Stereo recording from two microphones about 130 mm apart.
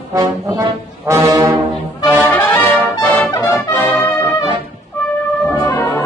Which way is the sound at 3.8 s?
30° left (ahead or behind).